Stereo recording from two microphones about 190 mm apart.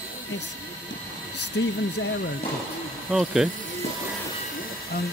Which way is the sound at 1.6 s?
75° left (ahead or behind).